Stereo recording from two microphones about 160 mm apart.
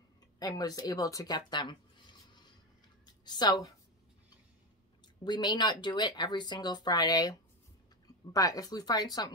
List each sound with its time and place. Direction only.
0.4 s speech: 25° left (ahead or behind)
3.3 s speech: 25° left (ahead or behind)
5.2 s speech: 25° left (ahead or behind)